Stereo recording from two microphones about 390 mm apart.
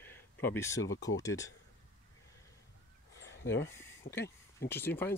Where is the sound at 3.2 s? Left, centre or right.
Left.